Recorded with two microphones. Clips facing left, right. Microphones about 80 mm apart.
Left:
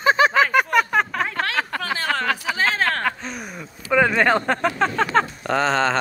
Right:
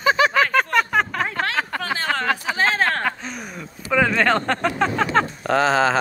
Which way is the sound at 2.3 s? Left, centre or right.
Right.